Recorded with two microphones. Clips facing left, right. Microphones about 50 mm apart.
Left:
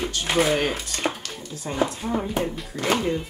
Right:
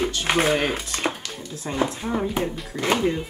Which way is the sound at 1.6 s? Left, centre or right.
Centre.